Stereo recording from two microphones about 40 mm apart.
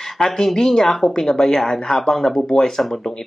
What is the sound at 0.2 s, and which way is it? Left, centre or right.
Speech, centre.